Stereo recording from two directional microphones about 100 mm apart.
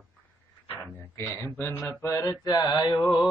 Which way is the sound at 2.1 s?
35° left (ahead or behind).